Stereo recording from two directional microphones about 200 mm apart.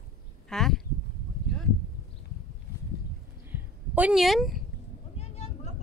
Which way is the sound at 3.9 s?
5° right (ahead or behind).